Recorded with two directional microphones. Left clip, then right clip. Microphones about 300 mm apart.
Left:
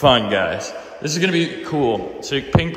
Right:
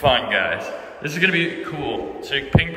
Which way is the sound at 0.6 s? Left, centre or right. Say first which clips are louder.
Left 1 dB; centre.